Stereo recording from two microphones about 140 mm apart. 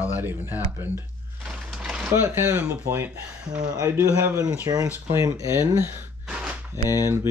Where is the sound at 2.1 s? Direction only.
15° right (ahead or behind).